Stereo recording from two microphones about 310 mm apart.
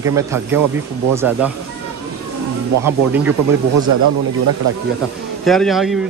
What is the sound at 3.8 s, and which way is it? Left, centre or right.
Speech, right.